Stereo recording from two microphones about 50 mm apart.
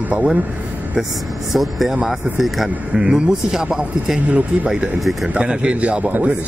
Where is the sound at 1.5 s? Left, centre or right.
Centre.